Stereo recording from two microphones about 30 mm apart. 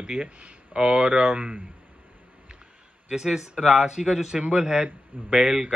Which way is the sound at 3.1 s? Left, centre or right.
Centre.